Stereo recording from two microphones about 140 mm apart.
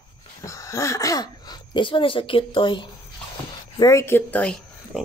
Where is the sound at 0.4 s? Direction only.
25° left (ahead or behind).